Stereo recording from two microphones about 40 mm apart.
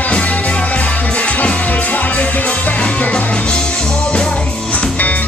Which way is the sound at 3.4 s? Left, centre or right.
Left.